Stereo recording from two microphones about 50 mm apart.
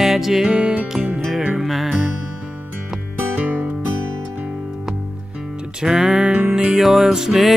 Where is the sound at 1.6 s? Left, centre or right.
Centre.